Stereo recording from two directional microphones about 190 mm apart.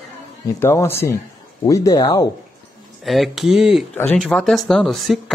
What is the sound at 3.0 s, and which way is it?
Speech, centre (ahead or behind).